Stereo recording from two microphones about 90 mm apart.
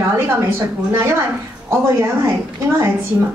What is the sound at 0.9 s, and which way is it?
A woman's voice, 30° right (ahead or behind).